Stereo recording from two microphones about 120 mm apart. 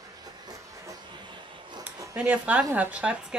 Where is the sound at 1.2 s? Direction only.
40° right (ahead or behind).